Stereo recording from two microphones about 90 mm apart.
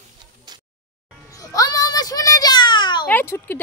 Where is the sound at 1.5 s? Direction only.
45° left (ahead or behind); by 3.0 s 60° left (ahead or behind).